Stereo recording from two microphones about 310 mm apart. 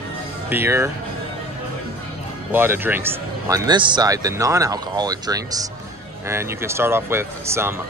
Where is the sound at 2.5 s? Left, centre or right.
Centre.